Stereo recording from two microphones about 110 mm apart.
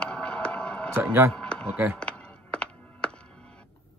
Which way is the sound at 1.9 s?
10° left (ahead or behind).